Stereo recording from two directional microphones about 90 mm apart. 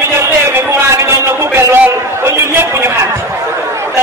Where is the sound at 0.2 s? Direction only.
30° right (ahead or behind).